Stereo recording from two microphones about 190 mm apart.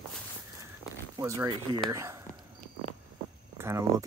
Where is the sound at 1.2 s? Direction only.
15° right (ahead or behind).